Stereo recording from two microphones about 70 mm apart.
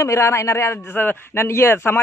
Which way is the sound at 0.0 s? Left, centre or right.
Left.